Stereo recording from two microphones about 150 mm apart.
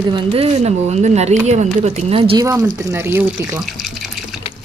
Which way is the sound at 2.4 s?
20° right (ahead or behind).